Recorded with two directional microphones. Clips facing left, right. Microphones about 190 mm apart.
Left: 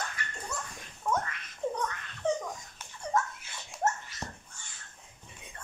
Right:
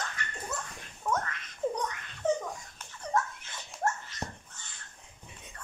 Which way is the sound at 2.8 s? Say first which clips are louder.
Left 1 dB; 10° left (ahead or behind).